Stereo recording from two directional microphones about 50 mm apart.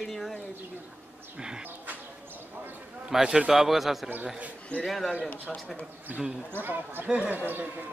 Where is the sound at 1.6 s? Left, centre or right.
Right.